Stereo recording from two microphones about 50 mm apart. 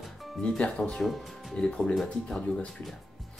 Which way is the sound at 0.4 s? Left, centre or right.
Left.